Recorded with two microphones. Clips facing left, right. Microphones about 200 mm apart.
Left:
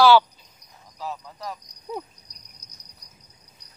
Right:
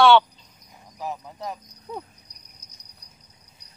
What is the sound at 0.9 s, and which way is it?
Speech, 15° right (ahead or behind).